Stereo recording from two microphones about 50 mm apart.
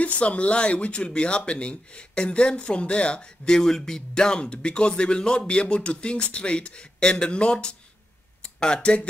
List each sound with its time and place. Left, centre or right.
0.0 s speech: left